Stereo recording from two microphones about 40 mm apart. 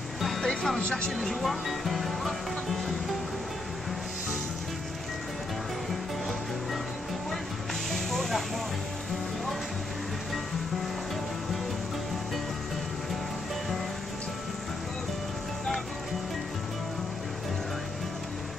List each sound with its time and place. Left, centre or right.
0.2 s music: centre
0.5 s music: centre
1.2 s speech: centre
7.9 s a sound: centre